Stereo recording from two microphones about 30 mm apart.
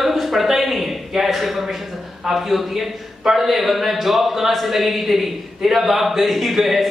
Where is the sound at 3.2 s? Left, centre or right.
Centre.